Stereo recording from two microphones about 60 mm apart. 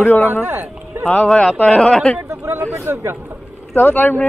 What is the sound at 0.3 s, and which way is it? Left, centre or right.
Speech, right.